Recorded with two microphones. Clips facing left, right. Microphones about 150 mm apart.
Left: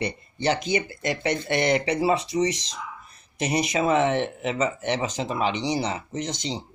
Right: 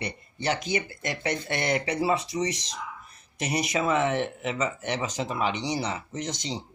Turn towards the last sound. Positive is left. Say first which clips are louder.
# left 3 dB
turn(degrees=25)  # may be behind; listen again after turning